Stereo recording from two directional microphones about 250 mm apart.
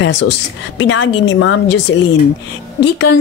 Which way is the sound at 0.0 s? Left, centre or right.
Left.